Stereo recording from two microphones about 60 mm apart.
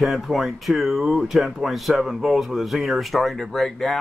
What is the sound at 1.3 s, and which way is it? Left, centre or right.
Speech, centre.